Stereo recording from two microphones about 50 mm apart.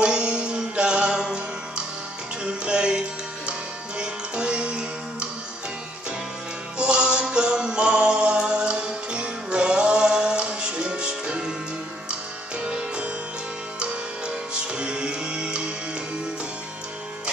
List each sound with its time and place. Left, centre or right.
0.0 s music: right
2.4 s music: centre
6.8 s music: centre